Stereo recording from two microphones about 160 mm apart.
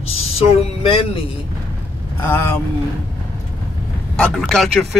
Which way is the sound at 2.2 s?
15° left (ahead or behind).